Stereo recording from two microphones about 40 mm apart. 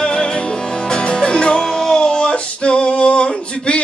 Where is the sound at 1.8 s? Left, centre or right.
Left.